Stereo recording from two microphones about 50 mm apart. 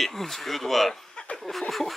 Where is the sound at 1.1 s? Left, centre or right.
Centre.